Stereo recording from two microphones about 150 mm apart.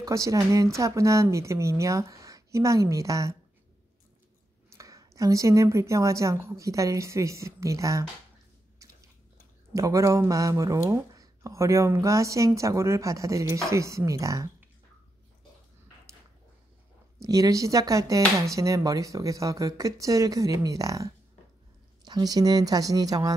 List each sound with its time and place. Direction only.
0.0 s speech: 20° right (ahead or behind)
4.6 s speech: 20° right (ahead or behind)
9.8 s speech: 20° right (ahead or behind)
17.2 s speech: 20° right (ahead or behind)